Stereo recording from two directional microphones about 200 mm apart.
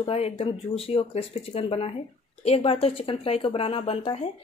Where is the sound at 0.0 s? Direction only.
30° left (ahead or behind).